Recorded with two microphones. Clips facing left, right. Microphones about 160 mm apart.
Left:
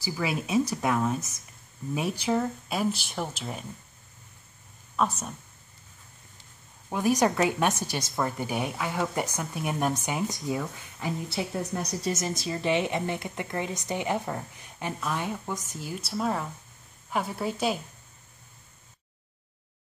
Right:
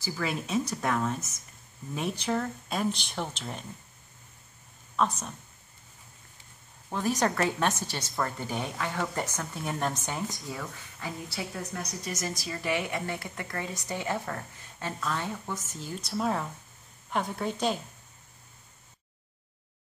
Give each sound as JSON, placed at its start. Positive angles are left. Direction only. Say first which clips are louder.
{"t": 0.0, "sound": "speech", "louder": "left 2 dB", "side_deg": 10}
{"t": 4.9, "sound": "speech", "louder": "left 1 dB", "side_deg": 5}
{"t": 6.9, "sound": "a woman's voice", "louder": "left 4 dB", "side_deg": 15}